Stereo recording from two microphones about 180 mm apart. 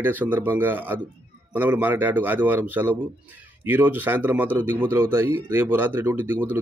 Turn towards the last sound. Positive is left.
turn(degrees=-10)  # may be behind; listen again after turning